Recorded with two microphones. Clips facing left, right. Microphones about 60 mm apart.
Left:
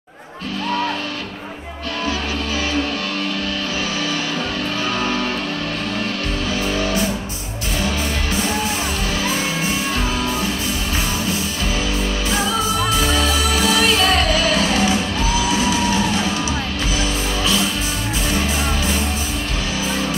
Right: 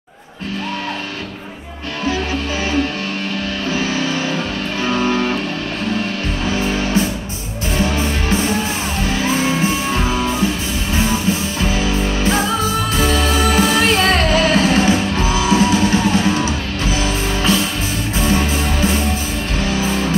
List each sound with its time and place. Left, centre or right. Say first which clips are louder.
4.9 s music: right 7 dB; right
6.5 s music: right 3 dB; right
12.9 s music: right 2 dB; right